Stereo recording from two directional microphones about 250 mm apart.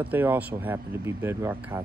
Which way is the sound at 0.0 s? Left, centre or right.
Centre.